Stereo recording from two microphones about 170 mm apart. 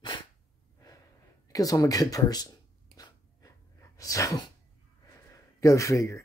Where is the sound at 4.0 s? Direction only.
20° left (ahead or behind).